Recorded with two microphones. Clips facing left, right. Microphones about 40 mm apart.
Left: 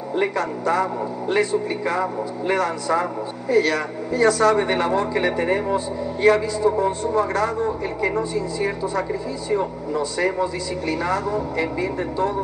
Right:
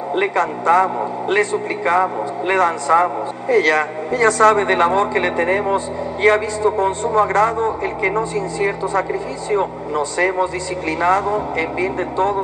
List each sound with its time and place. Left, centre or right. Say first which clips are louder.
0.1 s a man's voice: right 4 dB; right